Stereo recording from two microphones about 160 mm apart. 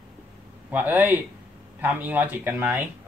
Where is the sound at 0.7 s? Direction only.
10° right (ahead or behind).